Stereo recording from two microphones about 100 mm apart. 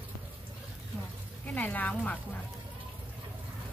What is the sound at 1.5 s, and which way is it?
Speech, 15° left (ahead or behind).